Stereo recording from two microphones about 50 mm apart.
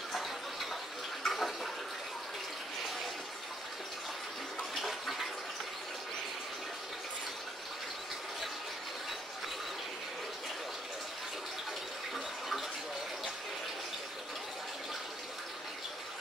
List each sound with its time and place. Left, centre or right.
0.1 s a sound: centre
1.2 s water: centre
4.6 s bathtub: centre